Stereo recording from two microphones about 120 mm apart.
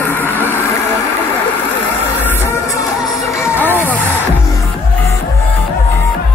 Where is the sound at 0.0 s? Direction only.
15° left (ahead or behind).